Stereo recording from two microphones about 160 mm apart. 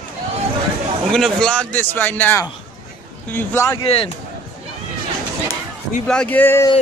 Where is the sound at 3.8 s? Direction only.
35° left (ahead or behind).